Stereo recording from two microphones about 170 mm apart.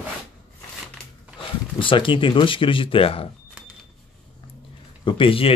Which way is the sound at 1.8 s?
30° left (ahead or behind).